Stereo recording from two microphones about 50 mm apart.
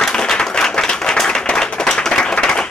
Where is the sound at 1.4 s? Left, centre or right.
Centre.